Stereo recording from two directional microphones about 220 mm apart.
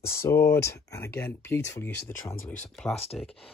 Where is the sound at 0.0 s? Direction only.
10° left (ahead or behind).